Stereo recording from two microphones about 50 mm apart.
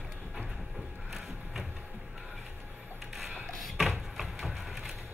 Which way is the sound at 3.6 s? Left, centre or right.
Centre.